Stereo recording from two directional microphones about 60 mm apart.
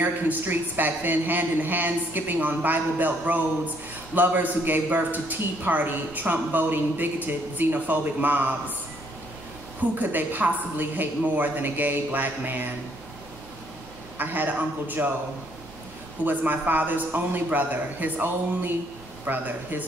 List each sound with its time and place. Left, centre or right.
0.0 s speech: right
9.9 s speech: right
14.1 s a man's voice: right
16.3 s a man's voice: right